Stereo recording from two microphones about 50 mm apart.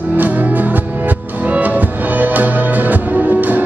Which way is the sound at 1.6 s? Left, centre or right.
Right.